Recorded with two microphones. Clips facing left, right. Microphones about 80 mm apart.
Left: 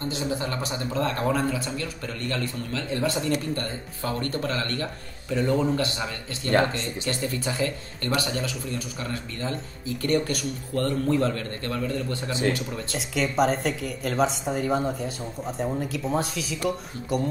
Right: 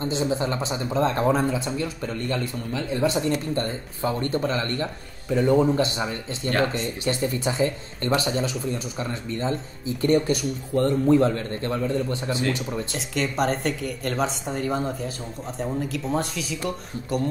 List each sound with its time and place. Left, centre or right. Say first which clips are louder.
0.0 s speech: right 4 dB; right
12.9 s a woman's voice: left 4 dB; centre